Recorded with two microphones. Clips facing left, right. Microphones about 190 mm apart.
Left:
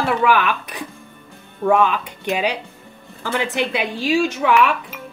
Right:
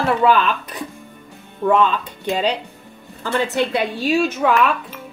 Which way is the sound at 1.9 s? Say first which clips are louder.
Even; 10° left (ahead or behind).